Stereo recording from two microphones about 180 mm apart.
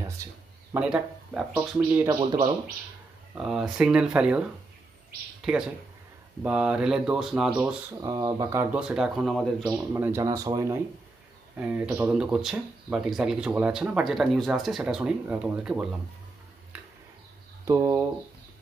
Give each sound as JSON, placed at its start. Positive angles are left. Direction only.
{"t": 0.2, "sound": "speech", "side_deg": -15}
{"t": 0.7, "sound": "speech", "side_deg": -5}
{"t": 2.0, "sound": "speech", "side_deg": -25}
{"t": 3.3, "sound": "speech", "side_deg": -5}
{"t": 8.0, "sound": "speech", "side_deg": -20}
{"t": 8.7, "sound": "speech", "side_deg": -5}
{"t": 9.9, "sound": "speech", "side_deg": -15}
{"t": 17.6, "sound": "speech", "side_deg": -15}